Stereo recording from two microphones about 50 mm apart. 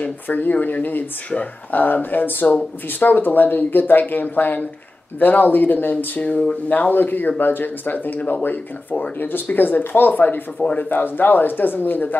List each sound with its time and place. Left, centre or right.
0.0 s speech: left
10.6 s speech: left
10.9 s speech: left